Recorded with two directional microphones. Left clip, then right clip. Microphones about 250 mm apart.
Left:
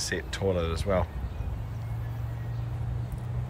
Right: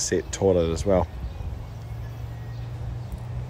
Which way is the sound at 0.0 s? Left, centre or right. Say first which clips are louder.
Right 7 dB; right.